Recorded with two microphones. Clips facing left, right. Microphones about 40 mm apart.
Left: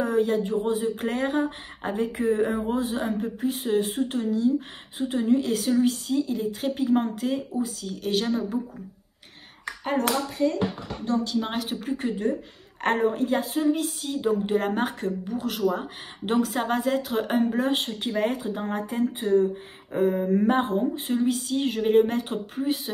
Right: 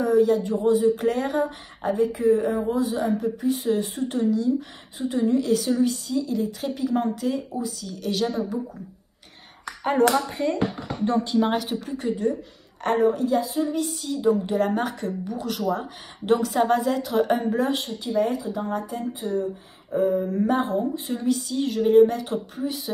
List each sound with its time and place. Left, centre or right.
0.0 s a sound: left
0.4 s speech: left
2.0 s speech: left
3.3 s speech: centre
5.5 s speech: centre
5.9 s speech: left
6.3 s speech: left
10.1 s speech: right
11.4 s speech: centre
11.9 s speech: left
14.0 s speech: left
15.2 s speech: centre
17.7 s speech: left
21.2 s speech: centre